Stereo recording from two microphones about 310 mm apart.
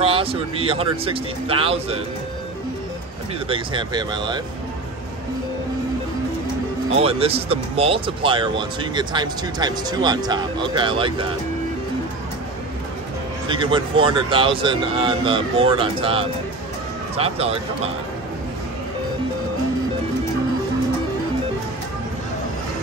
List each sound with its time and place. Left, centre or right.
0.0 s speech: centre
3.4 s speech: centre
6.9 s speech: centre
13.5 s speech: centre